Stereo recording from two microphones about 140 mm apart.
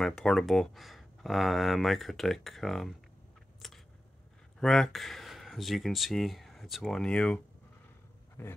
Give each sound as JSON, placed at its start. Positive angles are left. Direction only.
{"t": 0.0, "sound": "speech", "side_deg": 5}
{"t": 3.6, "sound": "a sound", "side_deg": 0}
{"t": 4.6, "sound": "speech", "side_deg": 5}
{"t": 8.4, "sound": "speech", "side_deg": 15}